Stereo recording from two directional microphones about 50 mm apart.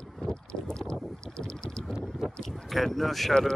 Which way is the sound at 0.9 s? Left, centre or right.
Centre.